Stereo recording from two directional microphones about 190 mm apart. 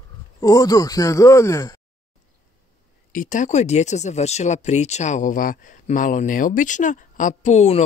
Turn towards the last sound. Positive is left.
turn(degrees=35)  # may be behind; listen again after turning